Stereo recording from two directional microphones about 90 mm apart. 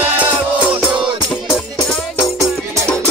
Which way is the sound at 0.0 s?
15° right (ahead or behind).